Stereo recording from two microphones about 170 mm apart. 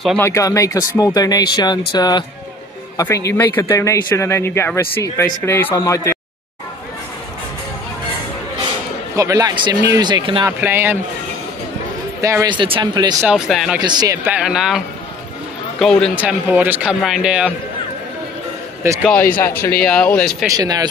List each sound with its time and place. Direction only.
0.2 s speech: 20° left (ahead or behind)
9.1 s speech: 20° right (ahead or behind)
10.4 s speech: 15° right (ahead or behind)
12.2 s speech: 20° right (ahead or behind)
12.5 s speech: 30° right (ahead or behind)
13.3 s a man's voice: 5° right (ahead or behind)
13.7 s speech: 25° right (ahead or behind)
14.3 s a man's voice: 5° right (ahead or behind)
15.8 s a man's voice: 5° left (ahead or behind)
16.2 s a man's voice: 10° right (ahead or behind)
18.8 s speech: 15° right (ahead or behind)
19.3 s a man's voice: 15° left (ahead or behind)
20.4 s speech: 20° right (ahead or behind)